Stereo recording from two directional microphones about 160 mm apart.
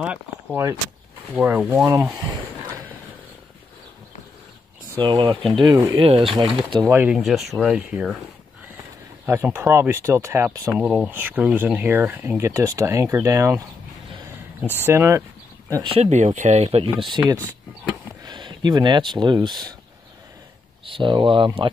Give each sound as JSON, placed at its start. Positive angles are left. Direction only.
{"t": 0.0, "sound": "speech", "side_deg": -10}
{"t": 2.1, "sound": "a sound", "side_deg": -25}
{"t": 5.0, "sound": "speech", "side_deg": -30}
{"t": 5.9, "sound": "speech", "side_deg": -35}
{"t": 6.9, "sound": "speech", "side_deg": -15}
{"t": 7.2, "sound": "speech", "side_deg": 0}
{"t": 9.2, "sound": "speech", "side_deg": -15}
{"t": 10.8, "sound": "speech", "side_deg": -10}
{"t": 14.9, "sound": "speech", "side_deg": -15}
{"t": 15.7, "sound": "speech", "side_deg": -30}
{"t": 16.0, "sound": "speech", "side_deg": -45}
{"t": 17.2, "sound": "speech", "side_deg": -20}
{"t": 18.2, "sound": "speech", "side_deg": -30}
{"t": 20.8, "sound": "speech", "side_deg": -30}